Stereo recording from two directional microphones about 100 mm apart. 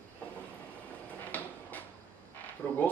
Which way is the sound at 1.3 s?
15° left (ahead or behind).